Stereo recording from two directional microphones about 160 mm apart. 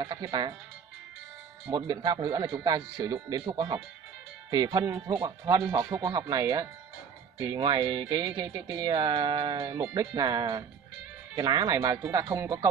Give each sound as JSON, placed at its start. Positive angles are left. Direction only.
{"t": 0.0, "sound": "speech", "side_deg": -25}
{"t": 1.7, "sound": "speech", "side_deg": -25}